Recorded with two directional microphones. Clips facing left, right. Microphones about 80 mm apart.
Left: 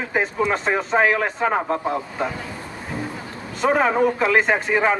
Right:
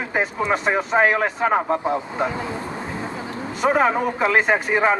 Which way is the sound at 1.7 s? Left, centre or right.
Right.